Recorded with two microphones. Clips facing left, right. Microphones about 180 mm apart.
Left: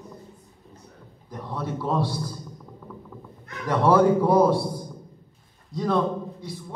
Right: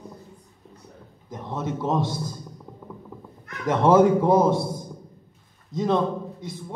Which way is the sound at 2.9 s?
20° right (ahead or behind).